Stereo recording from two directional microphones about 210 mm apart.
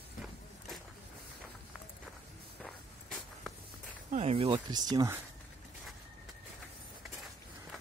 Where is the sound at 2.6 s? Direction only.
5° left (ahead or behind).